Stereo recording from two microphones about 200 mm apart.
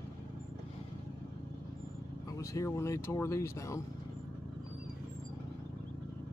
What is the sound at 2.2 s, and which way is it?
Speech, 15° left (ahead or behind).